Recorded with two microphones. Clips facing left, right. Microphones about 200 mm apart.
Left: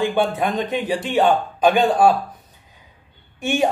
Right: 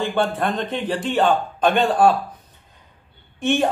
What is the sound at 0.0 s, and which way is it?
Speech, 5° left (ahead or behind).